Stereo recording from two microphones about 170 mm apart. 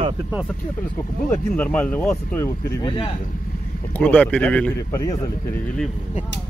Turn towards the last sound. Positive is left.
turn(degrees=10)  # may be behind; listen again after turning